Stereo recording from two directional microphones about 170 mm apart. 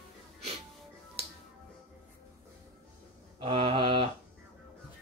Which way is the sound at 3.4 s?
35° right (ahead or behind).